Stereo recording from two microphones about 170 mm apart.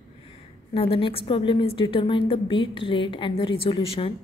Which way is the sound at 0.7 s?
35° left (ahead or behind).